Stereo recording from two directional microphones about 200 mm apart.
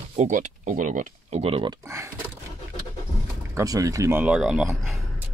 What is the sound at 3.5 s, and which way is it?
Speech, 15° right (ahead or behind).